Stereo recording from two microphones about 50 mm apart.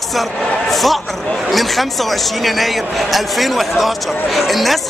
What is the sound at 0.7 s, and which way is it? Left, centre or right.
Speech, centre.